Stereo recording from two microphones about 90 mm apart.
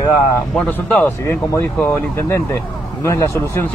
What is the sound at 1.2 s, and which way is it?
Speech, 30° left (ahead or behind).